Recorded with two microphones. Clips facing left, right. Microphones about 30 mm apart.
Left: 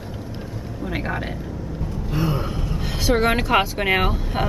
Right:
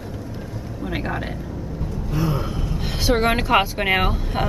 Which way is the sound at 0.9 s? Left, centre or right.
Centre.